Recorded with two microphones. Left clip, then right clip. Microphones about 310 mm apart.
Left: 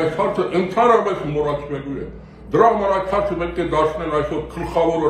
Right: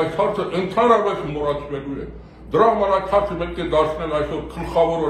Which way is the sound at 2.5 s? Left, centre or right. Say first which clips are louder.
Left 1 dB; centre.